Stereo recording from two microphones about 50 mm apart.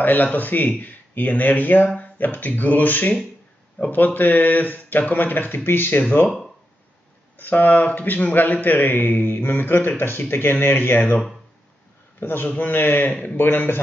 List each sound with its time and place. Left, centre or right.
0.0 s speech: left
7.3 s speech: left
12.2 s a man's voice: left
13.1 s speech: left
13.4 s a man's voice: left